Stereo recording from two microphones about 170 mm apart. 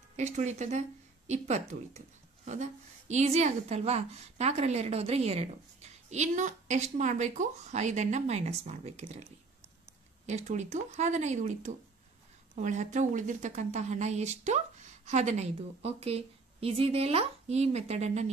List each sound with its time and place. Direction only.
0.1 s speech: 40° right (ahead or behind)
10.2 s speech: 45° right (ahead or behind)